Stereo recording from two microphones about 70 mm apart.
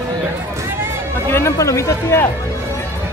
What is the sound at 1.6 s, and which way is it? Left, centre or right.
Speech, left.